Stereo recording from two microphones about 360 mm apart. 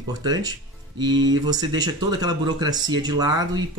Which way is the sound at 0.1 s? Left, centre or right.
Centre.